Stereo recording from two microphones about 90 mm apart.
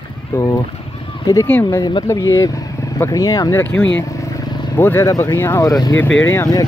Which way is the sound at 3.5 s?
20° left (ahead or behind).